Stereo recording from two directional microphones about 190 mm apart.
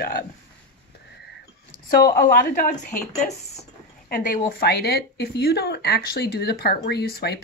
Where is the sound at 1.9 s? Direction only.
50° left (ahead or behind).